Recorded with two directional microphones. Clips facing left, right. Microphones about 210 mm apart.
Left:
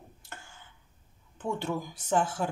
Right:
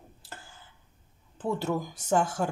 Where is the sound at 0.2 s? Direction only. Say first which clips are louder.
Right 2 dB; 35° right (ahead or behind).